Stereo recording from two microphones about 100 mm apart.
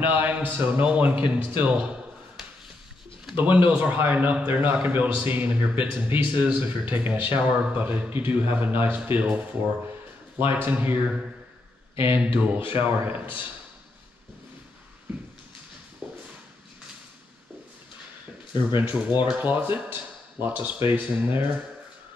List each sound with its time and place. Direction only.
0.2 s a man's voice: 20° right (ahead or behind)
16.0 s a sound: 15° right (ahead or behind)
18.8 s a man's voice: 15° right (ahead or behind)